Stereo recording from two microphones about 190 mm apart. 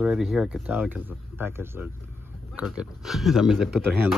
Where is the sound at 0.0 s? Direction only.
5° right (ahead or behind).